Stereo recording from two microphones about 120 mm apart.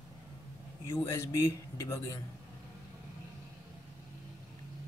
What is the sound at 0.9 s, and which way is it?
Speech, 25° left (ahead or behind).